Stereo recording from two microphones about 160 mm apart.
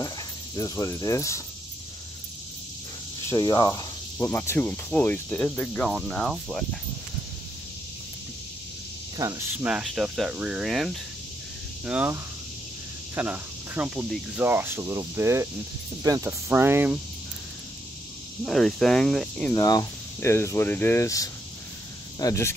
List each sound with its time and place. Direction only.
0.6 s cricket: 20° left (ahead or behind)
3.3 s cricket: 25° left (ahead or behind); by 6.8 s 5° left (ahead or behind)
9.1 s speech: 20° right (ahead or behind)
13.1 s speech: 10° right (ahead or behind)
18.4 s speech: centre (ahead or behind)
19.5 s cricket: 25° left (ahead or behind)